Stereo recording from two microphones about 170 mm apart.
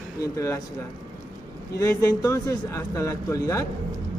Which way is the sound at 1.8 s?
15° left (ahead or behind).